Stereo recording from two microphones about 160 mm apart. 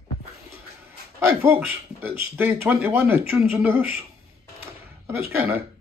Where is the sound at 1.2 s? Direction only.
15° right (ahead or behind).